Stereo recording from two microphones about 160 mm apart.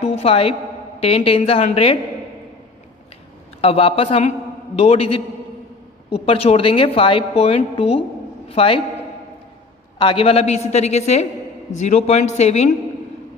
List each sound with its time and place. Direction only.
0.0 s a woman's voice: 40° left (ahead or behind)
3.6 s a woman's voice: 35° left (ahead or behind)
9.9 s a woman's voice: 30° left (ahead or behind)